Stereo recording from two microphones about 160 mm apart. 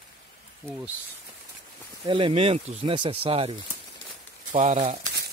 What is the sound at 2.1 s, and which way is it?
Speech, 30° right (ahead or behind).